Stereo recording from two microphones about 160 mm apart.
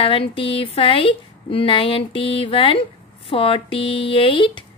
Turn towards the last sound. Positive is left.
turn(degrees=30)  # may be behind; listen again after turning